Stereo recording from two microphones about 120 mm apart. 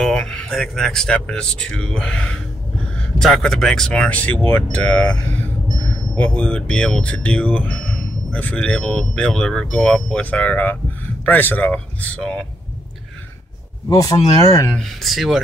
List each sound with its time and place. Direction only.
0.0 s speech: 5° left (ahead or behind)
13.8 s speech: 30° left (ahead or behind)
14.7 s speech: 5° left (ahead or behind)